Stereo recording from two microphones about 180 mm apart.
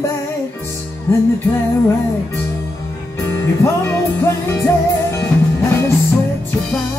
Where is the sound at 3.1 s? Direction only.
15° left (ahead or behind).